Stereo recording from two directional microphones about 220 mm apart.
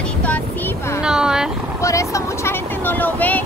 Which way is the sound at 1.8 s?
15° left (ahead or behind).